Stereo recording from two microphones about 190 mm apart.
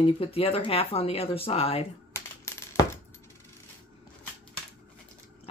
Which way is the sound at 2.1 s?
15° left (ahead or behind).